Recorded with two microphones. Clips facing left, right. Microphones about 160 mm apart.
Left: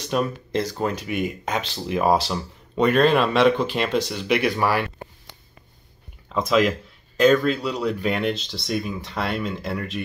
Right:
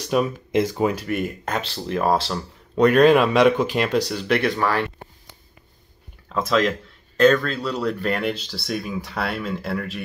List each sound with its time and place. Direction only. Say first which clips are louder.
0.0 s a sound: right 2 dB; 5° right (ahead or behind)
0.5 s speech: right 4 dB; 20° right (ahead or behind)
1.0 s speech: right 1 dB; centre (ahead or behind)
6.2 s speech: left 1 dB; centre (ahead or behind)